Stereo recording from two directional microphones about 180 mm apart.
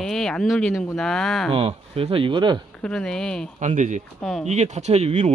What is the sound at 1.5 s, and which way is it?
Speech, 30° right (ahead or behind).